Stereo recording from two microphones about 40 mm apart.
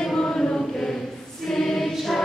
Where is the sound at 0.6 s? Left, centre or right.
Centre.